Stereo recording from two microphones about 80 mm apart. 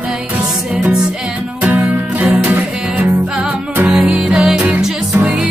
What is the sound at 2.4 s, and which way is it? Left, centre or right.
Music, centre.